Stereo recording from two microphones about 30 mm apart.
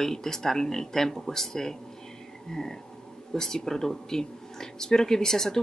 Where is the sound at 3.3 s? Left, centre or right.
Centre.